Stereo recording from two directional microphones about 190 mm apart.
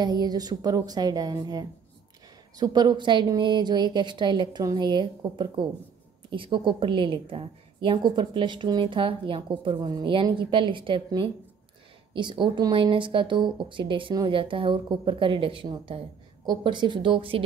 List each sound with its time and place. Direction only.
0.0 s a woman's voice: 20° right (ahead or behind)